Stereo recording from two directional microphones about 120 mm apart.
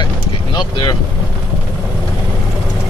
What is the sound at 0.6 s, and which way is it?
Boat, 40° left (ahead or behind).